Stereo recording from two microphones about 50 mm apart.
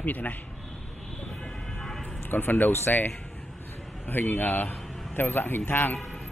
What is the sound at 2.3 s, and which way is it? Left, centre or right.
Speech, left.